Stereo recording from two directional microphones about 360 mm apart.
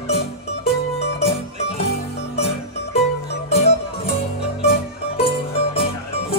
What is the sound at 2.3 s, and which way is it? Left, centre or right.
Music, centre.